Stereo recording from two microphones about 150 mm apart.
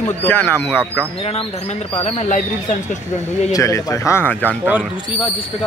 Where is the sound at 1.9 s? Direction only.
40° left (ahead or behind).